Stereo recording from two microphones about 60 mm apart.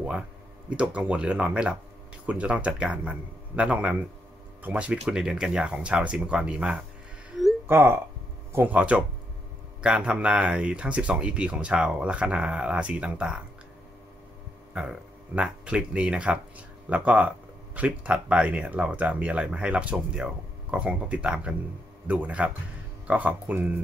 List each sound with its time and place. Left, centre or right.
0.7 s speech: right
7.6 s speech: right
8.6 s speech: centre
14.7 s speech: centre